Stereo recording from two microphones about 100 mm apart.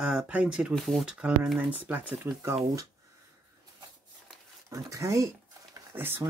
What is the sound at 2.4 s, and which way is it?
Speech, 30° right (ahead or behind).